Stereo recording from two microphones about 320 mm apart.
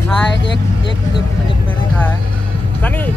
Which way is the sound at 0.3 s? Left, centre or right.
Left.